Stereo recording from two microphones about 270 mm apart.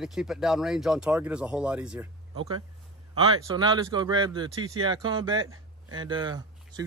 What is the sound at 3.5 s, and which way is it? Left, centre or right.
Speech, centre.